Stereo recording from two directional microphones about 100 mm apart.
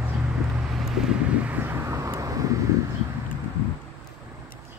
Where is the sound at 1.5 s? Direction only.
30° right (ahead or behind).